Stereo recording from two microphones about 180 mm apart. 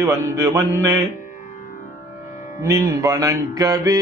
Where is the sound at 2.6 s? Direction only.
15° right (ahead or behind).